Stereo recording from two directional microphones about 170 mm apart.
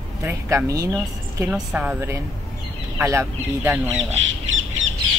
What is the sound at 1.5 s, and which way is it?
Speech, 10° right (ahead or behind).